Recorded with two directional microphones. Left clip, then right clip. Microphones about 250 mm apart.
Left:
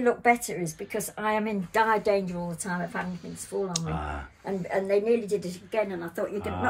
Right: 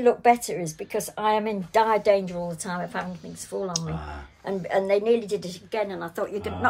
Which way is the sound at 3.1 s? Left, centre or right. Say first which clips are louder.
Right 1 dB; centre.